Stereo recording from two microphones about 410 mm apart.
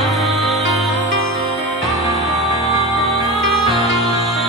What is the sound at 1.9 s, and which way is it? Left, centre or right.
Music, centre.